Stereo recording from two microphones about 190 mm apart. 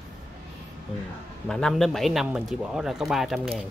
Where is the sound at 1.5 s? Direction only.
5° left (ahead or behind).